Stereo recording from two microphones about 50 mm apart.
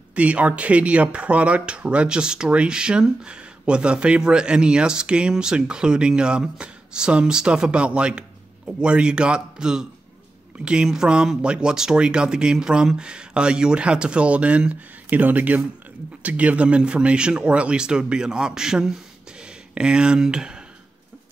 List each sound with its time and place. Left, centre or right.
0.1 s speech: right